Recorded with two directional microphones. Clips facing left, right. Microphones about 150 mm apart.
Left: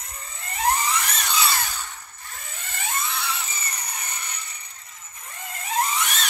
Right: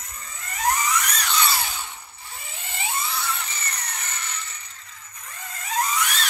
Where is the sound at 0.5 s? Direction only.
30° left (ahead or behind).